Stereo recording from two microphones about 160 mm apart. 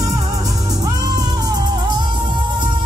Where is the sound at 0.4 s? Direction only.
25° right (ahead or behind).